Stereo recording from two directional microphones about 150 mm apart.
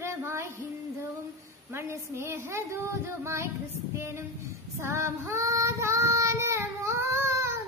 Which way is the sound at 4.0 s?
15° right (ahead or behind).